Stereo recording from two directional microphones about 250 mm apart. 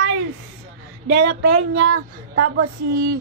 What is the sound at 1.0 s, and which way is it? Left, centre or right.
Speech, right.